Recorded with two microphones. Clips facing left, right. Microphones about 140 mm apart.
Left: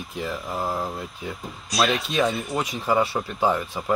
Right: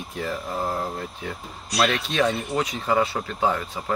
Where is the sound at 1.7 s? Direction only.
10° left (ahead or behind).